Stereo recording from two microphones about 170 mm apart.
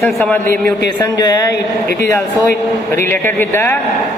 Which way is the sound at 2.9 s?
10° left (ahead or behind).